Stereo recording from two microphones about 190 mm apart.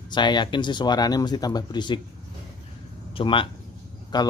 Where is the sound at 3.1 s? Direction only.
30° left (ahead or behind).